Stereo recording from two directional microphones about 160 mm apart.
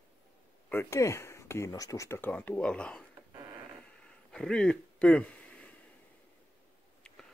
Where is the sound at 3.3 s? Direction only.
25° right (ahead or behind).